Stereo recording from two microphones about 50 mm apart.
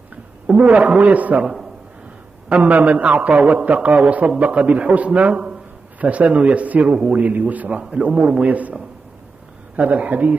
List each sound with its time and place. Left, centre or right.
0.7 s a man's voice: right
1.4 s a man's voice: centre
2.5 s a man's voice: right
7.2 s a man's voice: right
7.8 s a man's voice: centre
9.8 s a man's voice: right